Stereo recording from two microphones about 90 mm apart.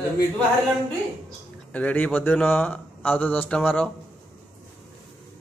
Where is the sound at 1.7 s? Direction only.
15° left (ahead or behind).